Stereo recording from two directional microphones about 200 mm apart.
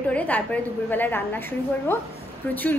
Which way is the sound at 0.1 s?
5° left (ahead or behind).